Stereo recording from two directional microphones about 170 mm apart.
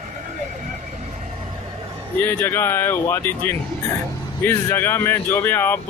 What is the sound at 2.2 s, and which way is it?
Speech, 10° left (ahead or behind).